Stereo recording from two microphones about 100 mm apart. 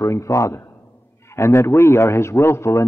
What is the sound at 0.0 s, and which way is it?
A man's voice, 30° left (ahead or behind).